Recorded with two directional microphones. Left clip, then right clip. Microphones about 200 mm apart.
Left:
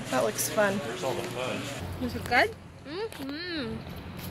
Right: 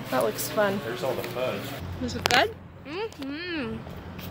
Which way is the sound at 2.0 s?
Centre (ahead or behind).